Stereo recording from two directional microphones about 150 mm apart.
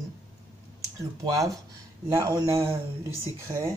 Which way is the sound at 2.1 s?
20° right (ahead or behind).